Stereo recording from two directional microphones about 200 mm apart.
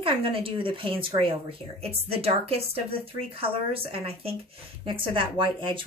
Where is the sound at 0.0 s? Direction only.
25° right (ahead or behind).